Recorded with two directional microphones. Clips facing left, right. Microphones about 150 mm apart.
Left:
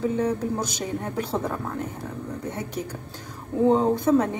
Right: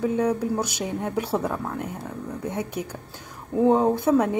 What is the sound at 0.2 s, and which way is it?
Speech, 10° right (ahead or behind).